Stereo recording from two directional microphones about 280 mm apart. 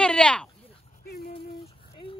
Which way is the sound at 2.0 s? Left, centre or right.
Centre.